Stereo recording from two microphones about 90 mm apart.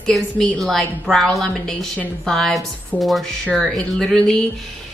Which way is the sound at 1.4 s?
Centre (ahead or behind).